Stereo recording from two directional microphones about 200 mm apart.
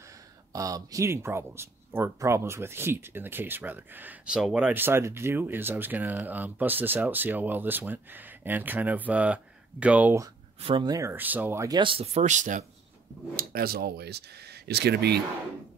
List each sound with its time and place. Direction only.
0.5 s speech: 15° right (ahead or behind)
10.6 s speech: 25° right (ahead or behind); by 12.6 s 40° right (ahead or behind)
13.4 s speech: 50° right (ahead or behind)